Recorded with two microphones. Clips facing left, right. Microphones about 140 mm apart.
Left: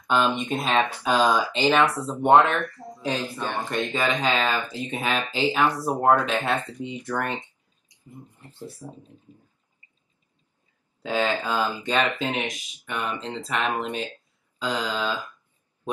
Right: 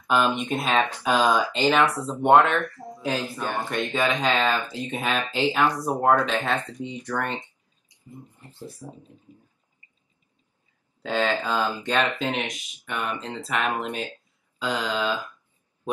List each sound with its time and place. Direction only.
0.0 s speech: 5° right (ahead or behind)
2.0 s speech: 10° left (ahead or behind)
2.9 s speech: 10° right (ahead or behind)
3.9 s speech: 5° left (ahead or behind)
8.6 s speech: 15° right (ahead or behind)
11.0 s speech: 5° left (ahead or behind)